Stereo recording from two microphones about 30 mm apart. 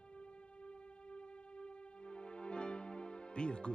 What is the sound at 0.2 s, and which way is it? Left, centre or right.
Music, left.